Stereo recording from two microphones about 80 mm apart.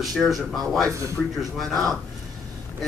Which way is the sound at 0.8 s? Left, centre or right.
Right.